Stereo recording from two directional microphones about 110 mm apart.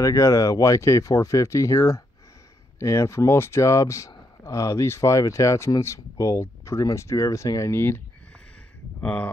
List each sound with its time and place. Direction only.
0.0 s speech: 30° left (ahead or behind)
9.0 s speech: 10° left (ahead or behind)